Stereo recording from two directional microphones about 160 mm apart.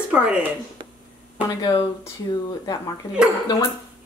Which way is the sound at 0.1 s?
5° right (ahead or behind).